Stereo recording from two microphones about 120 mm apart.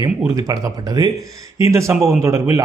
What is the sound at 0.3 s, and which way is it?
A man's voice, 30° right (ahead or behind).